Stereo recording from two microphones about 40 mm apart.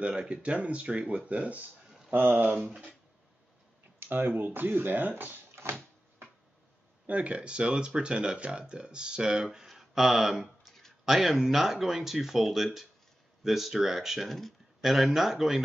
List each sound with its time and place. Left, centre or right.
0.0 s speech: right
2.1 s speech: right
4.0 s speech: right
7.1 s speech: right; by 15.6 s centre